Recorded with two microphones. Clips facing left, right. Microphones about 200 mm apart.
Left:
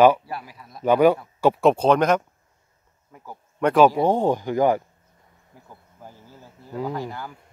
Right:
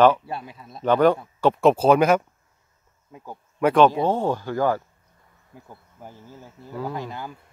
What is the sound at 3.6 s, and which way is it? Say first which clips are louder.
Speech: even; 5° left (ahead or behind).